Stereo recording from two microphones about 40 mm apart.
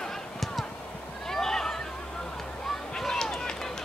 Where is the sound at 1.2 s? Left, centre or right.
Centre.